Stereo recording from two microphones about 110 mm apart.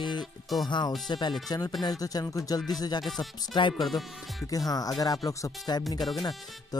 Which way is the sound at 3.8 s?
Centre (ahead or behind).